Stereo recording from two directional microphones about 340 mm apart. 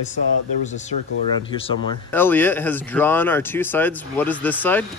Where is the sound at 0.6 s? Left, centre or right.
Left.